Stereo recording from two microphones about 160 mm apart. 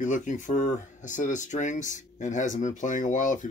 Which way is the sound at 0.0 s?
50° left (ahead or behind).